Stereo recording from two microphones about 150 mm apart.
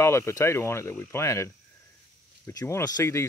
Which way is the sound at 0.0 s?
20° left (ahead or behind).